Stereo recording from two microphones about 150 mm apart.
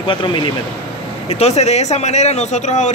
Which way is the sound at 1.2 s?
45° left (ahead or behind).